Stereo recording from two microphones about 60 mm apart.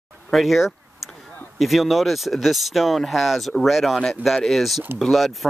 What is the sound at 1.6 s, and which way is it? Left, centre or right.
Speech, centre.